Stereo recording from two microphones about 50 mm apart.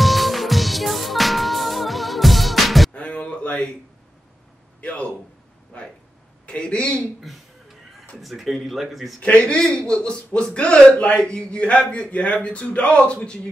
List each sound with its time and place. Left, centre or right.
0.0 s music: centre
2.9 s a sound: left
4.8 s speech: left
6.4 s speech: left
7.2 s a sound: centre
8.2 s speech: centre
9.5 s speech: centre